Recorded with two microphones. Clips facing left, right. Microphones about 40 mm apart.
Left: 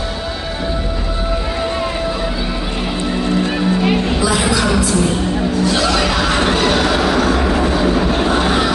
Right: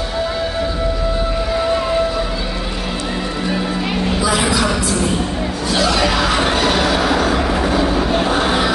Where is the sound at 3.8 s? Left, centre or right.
Centre.